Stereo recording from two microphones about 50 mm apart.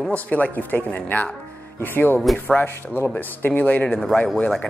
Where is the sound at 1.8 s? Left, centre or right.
Left.